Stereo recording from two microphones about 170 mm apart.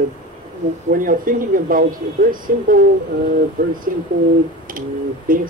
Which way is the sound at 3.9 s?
55° right (ahead or behind).